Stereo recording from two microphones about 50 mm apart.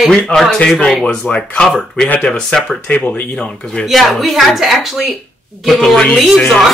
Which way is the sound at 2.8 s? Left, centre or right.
Left.